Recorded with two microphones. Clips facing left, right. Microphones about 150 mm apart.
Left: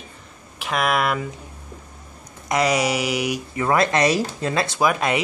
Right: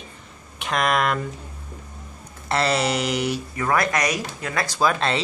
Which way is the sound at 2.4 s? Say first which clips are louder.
Left 2 dB; 15° left (ahead or behind).